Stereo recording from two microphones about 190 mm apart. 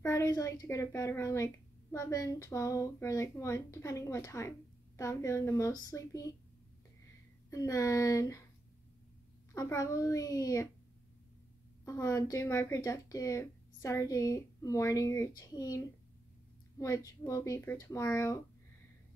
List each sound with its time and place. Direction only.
0.0 s speech: 15° left (ahead or behind)
7.5 s speech: 15° left (ahead or behind)
9.5 s speech: 15° left (ahead or behind)
11.8 s speech: 15° left (ahead or behind)